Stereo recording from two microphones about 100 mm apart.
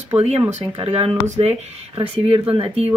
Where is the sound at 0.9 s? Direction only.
90° right.